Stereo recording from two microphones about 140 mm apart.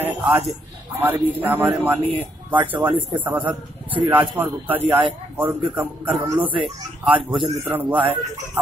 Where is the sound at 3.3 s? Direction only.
10° right (ahead or behind).